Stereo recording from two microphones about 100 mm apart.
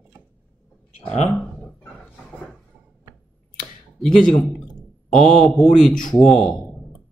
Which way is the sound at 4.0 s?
5° left (ahead or behind).